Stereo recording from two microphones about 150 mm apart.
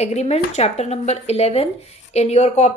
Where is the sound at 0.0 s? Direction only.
45° left (ahead or behind).